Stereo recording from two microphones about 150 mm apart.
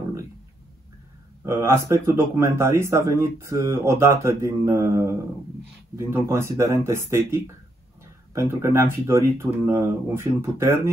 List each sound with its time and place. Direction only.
1.4 s speech: 15° right (ahead or behind)